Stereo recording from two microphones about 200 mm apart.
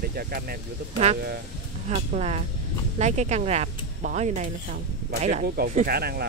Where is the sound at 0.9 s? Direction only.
35° right (ahead or behind); by 6.2 s 50° right (ahead or behind).